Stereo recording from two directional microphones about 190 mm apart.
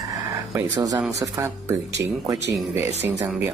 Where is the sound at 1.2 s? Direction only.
20° right (ahead or behind).